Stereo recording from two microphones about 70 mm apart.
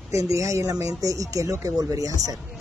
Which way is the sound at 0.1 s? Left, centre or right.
Right.